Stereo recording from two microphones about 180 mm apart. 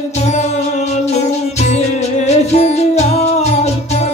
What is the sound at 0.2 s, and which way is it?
Music, 40° left (ahead or behind).